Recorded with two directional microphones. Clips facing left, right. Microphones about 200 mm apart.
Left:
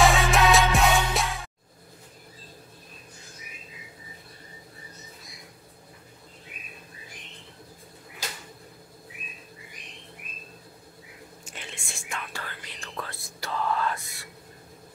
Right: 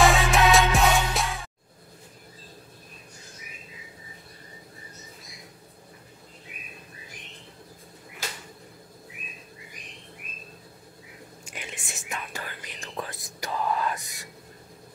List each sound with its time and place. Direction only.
0.0 s music: centre (ahead or behind)
11.5 s whispering: 15° right (ahead or behind)